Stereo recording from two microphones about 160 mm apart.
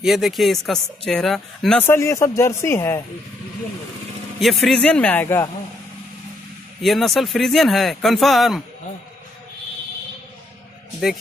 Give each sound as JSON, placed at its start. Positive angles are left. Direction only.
{"t": 0.0, "sound": "speech", "side_deg": 0}
{"t": 1.8, "sound": "a man's voice", "side_deg": 15}
{"t": 4.4, "sound": "a man's voice", "side_deg": 0}
{"t": 6.8, "sound": "speech", "side_deg": 0}